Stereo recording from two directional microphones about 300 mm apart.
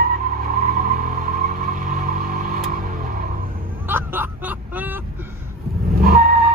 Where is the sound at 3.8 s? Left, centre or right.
Centre.